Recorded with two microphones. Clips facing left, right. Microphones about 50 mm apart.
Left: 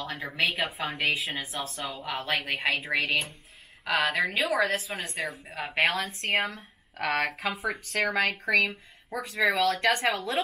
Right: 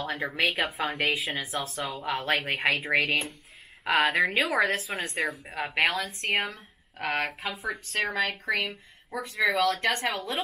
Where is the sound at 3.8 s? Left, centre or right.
Right.